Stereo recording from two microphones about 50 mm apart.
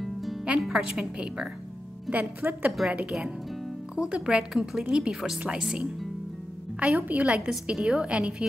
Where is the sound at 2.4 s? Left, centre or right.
Right.